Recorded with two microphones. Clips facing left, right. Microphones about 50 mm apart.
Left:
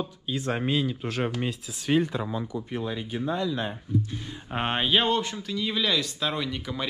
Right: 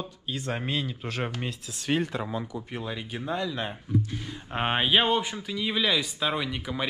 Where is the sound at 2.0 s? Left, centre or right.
Right.